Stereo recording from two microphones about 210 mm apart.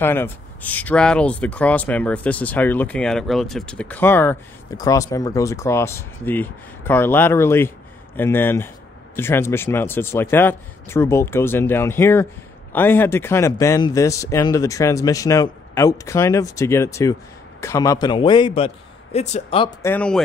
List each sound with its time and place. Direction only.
0.0 s a man's voice: 10° left (ahead or behind); by 19.7 s 30° left (ahead or behind)
19.8 s speech: 10° left (ahead or behind)